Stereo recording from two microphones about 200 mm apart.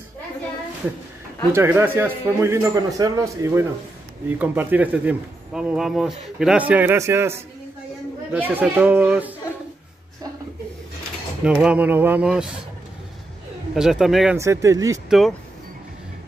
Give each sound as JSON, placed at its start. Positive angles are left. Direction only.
{"t": 1.5, "sound": "speech", "side_deg": -10}
{"t": 11.4, "sound": "speech", "side_deg": -5}
{"t": 13.7, "sound": "speech", "side_deg": 0}
{"t": 14.3, "sound": "speech", "side_deg": -15}
{"t": 15.0, "sound": "speech", "side_deg": 0}